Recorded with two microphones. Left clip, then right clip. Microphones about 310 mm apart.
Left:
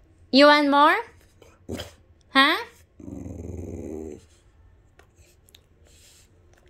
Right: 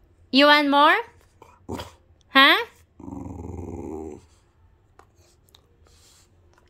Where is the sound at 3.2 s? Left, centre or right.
Centre.